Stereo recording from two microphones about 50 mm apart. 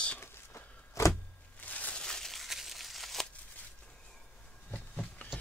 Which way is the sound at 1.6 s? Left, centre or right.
Left.